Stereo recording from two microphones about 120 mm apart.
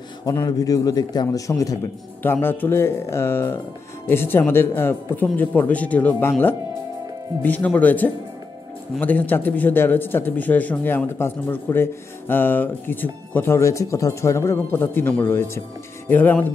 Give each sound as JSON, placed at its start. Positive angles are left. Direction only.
{"t": 0.2, "sound": "a man's voice", "side_deg": 30}
{"t": 2.4, "sound": "speech", "side_deg": 15}
{"t": 7.4, "sound": "speech", "side_deg": 15}